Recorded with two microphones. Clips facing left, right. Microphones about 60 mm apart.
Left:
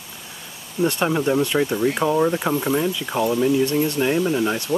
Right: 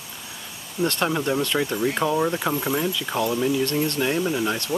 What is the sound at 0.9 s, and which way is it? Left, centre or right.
Speech, centre.